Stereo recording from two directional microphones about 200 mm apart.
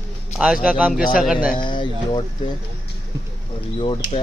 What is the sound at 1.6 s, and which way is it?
Speech, 25° left (ahead or behind).